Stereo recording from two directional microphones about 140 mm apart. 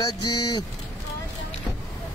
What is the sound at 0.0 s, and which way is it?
Speech, 35° left (ahead or behind).